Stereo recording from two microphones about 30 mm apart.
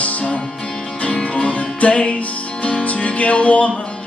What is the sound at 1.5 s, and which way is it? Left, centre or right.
Music, left.